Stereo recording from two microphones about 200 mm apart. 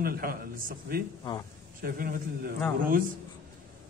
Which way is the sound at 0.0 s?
50° right (ahead or behind).